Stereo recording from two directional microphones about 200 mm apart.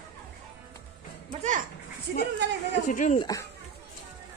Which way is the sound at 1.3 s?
35° right (ahead or behind).